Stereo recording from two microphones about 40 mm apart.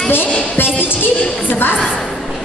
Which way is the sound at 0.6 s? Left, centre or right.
Left.